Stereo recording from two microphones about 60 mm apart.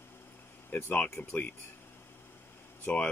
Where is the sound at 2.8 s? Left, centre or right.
Centre.